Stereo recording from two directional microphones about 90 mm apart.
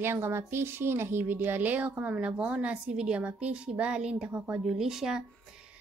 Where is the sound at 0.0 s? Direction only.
25° right (ahead or behind).